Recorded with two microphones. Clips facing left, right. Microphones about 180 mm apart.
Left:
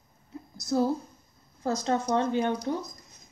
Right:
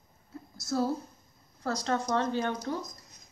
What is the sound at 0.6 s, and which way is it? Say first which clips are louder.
A woman's voice: left 4 dB; 15° left (ahead or behind).